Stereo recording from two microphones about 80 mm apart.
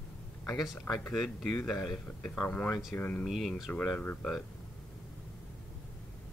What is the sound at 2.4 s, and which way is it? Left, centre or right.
Speech, left.